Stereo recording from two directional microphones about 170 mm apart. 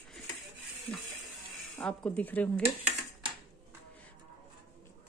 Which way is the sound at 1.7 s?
5° left (ahead or behind).